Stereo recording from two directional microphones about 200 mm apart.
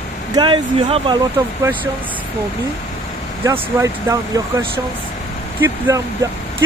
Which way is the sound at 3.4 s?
15° right (ahead or behind).